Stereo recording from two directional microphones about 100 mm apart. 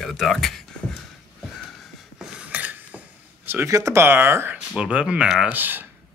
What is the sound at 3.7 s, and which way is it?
Speech, 30° right (ahead or behind).